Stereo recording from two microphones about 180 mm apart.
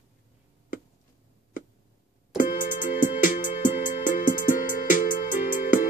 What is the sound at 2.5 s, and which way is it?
Music, 50° left (ahead or behind).